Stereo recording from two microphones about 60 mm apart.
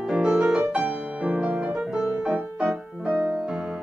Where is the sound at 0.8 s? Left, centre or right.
Centre.